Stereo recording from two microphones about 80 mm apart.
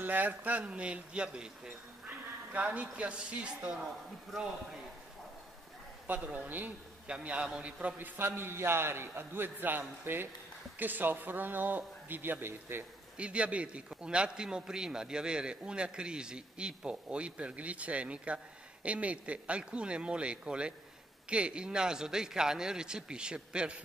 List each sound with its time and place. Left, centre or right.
0.0 s a man's voice: right
6.0 s a man's voice: centre
8.2 s a man's voice: right
13.2 s a man's voice: centre